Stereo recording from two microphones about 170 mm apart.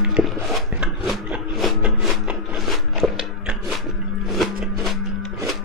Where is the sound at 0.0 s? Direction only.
5° right (ahead or behind).